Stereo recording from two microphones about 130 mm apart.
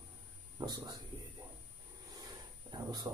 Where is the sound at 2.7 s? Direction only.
30° right (ahead or behind).